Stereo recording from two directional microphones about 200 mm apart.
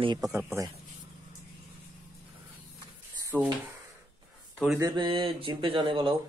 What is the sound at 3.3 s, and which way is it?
Speech, 10° right (ahead or behind).